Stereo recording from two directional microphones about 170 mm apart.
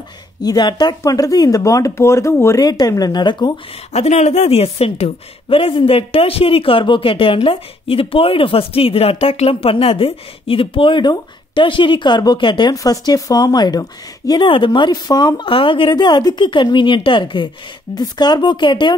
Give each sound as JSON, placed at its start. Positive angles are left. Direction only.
{"t": 0.4, "sound": "speech", "side_deg": 25}
{"t": 3.9, "sound": "speech", "side_deg": 40}